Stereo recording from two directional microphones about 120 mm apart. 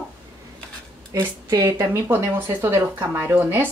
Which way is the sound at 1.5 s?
25° right (ahead or behind).